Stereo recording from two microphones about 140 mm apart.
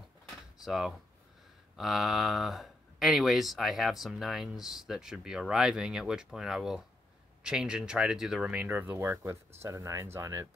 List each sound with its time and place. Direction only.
0.7 s speech: 5° right (ahead or behind)